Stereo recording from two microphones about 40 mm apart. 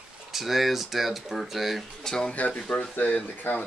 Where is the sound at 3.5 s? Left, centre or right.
Left.